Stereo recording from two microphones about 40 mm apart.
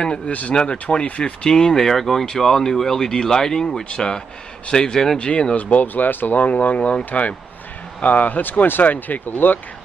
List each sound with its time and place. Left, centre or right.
0.3 s speech: left
0.6 s speech: left
1.5 s speech: centre
5.6 s speech: left
6.5 s speech: left